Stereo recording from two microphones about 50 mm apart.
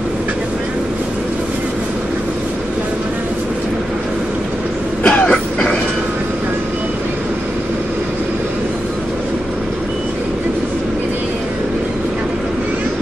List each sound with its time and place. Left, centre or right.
5.0 s throat clearing: centre